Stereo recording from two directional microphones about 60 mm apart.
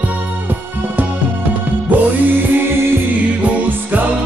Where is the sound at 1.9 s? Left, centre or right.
Right.